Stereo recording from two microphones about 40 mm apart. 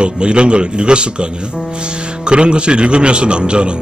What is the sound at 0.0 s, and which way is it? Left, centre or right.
Speech, right.